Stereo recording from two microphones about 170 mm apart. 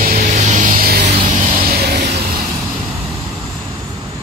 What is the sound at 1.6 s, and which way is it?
Vehicle, 65° right (ahead or behind).